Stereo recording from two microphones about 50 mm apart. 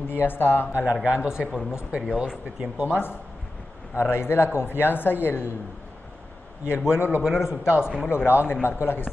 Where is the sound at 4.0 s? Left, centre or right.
Left.